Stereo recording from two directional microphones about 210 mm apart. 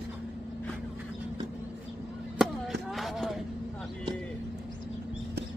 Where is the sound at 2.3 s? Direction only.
Centre (ahead or behind).